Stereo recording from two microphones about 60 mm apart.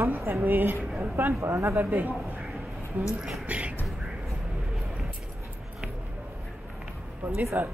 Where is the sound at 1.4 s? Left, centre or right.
Right.